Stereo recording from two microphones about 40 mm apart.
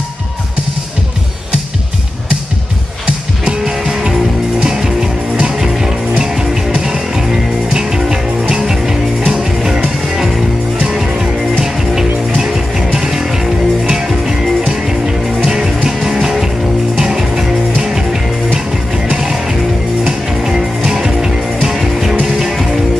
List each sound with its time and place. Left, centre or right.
3.6 s music: centre
20.4 s music: centre